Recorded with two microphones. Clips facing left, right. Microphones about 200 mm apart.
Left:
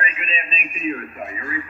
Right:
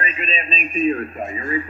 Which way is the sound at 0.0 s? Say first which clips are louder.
Right 3 dB; 30° right (ahead or behind).